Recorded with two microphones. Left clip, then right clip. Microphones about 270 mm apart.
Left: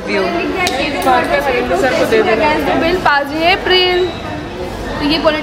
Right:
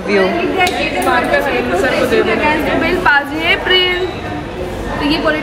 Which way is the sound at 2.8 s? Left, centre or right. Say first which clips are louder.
Right 2 dB; left.